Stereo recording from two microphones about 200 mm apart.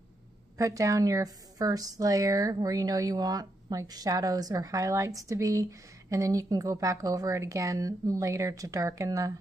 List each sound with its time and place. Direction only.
0.6 s a woman's voice: 15° right (ahead or behind)